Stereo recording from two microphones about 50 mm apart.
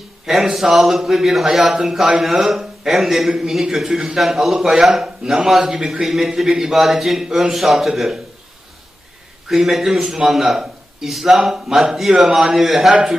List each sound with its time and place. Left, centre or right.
0.3 s a man's voice: centre
6.0 s a man's voice: centre
9.5 s a man's voice: centre